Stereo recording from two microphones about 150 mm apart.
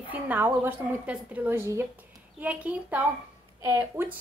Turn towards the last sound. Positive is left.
turn(degrees=-15)  # may be behind; listen again after turning